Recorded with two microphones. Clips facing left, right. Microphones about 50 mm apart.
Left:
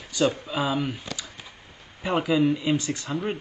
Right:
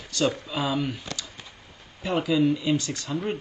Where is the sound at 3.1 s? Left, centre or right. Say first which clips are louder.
Right 1 dB; centre.